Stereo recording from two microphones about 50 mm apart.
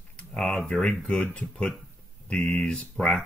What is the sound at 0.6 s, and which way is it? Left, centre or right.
Speech, left.